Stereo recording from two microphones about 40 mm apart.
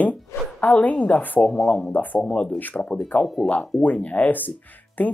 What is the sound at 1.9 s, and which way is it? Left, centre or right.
Speech, left.